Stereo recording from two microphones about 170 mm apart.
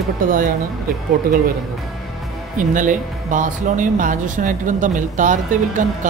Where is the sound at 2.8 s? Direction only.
50° right (ahead or behind).